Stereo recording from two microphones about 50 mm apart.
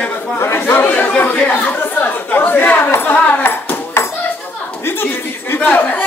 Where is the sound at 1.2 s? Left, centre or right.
Left.